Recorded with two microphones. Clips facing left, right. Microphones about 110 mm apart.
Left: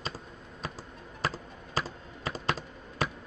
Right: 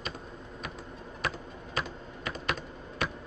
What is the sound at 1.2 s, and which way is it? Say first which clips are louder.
Music: left 1 dB; 30° left (ahead or behind).